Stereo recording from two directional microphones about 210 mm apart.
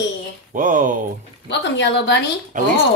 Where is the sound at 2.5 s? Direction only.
40° right (ahead or behind).